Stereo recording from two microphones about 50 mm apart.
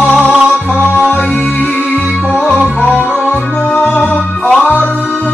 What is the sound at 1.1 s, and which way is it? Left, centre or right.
Music, left.